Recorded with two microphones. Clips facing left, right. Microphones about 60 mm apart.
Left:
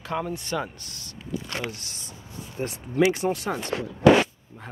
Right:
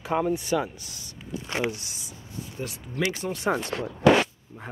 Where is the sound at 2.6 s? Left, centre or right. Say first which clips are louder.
Left 5 dB; left.